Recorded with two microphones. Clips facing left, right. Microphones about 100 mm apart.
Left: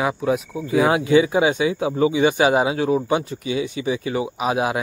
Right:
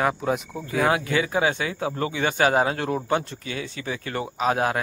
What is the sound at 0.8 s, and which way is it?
Speech, 20° left (ahead or behind).